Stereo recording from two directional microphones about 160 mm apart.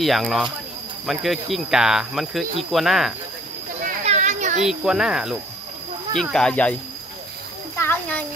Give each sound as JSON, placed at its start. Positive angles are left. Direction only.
{"t": 0.0, "sound": "cricket", "side_deg": 0}
{"t": 4.0, "sound": "children playing", "side_deg": -45}
{"t": 4.6, "sound": "cricket", "side_deg": -5}
{"t": 6.3, "sound": "cricket", "side_deg": 5}
{"t": 7.7, "sound": "a child's voice", "side_deg": 15}